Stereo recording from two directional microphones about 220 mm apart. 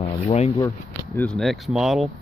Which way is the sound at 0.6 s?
10° left (ahead or behind).